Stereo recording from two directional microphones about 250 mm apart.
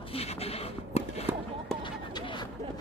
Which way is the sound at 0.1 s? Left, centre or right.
Left.